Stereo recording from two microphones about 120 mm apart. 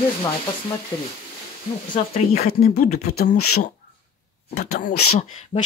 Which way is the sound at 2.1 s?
65° left (ahead or behind).